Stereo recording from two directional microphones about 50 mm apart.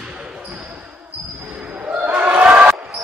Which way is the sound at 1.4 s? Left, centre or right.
Right.